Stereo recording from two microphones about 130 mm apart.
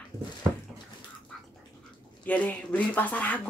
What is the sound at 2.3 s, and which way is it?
Speech, 10° left (ahead or behind).